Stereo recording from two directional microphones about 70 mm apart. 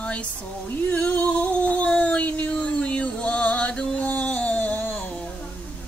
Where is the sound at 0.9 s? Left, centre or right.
Centre.